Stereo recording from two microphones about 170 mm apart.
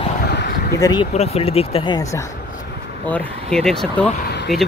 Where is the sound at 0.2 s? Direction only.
80° left.